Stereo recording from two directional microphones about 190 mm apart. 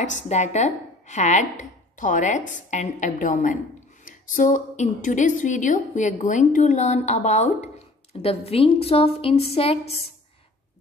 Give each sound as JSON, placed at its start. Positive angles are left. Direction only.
{"t": 0.3, "sound": "a woman's voice", "side_deg": 35}